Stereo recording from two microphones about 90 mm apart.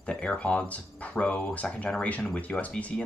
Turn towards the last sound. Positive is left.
turn(degrees=15)  # may be behind; listen again after turning